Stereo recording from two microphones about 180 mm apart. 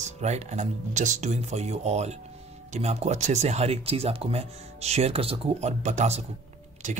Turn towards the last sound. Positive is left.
turn(degrees=-40)  # may be behind; listen again after turning